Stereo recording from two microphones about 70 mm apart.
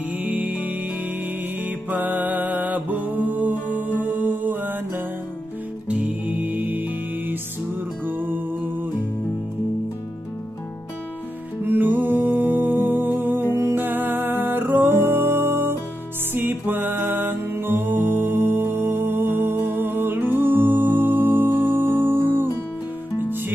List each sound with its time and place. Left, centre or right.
0.2 s music: right
11.6 s music: right